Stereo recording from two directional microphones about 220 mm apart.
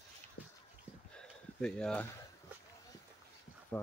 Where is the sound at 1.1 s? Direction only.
5° left (ahead or behind).